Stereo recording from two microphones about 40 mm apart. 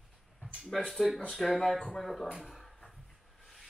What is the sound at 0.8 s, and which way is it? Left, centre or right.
Speech, centre.